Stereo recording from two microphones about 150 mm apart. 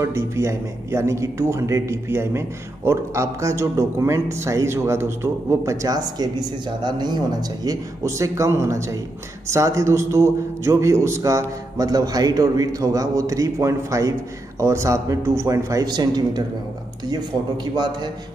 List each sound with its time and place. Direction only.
0.0 s a man's voice: 20° right (ahead or behind)
17.7 s a man's voice: 30° right (ahead or behind)